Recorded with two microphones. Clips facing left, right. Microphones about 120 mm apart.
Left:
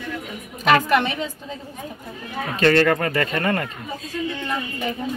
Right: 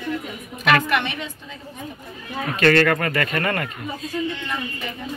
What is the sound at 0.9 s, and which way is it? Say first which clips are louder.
Speech: left 4 dB; 35° left (ahead or behind).